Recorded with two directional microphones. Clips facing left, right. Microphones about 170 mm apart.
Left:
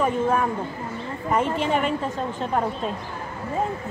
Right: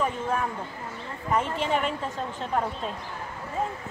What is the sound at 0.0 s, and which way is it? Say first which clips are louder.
A woman's voice: left 6 dB; 55° left (ahead or behind).